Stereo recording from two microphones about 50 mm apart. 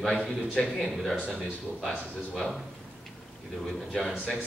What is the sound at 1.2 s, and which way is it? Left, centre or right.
Speech, centre.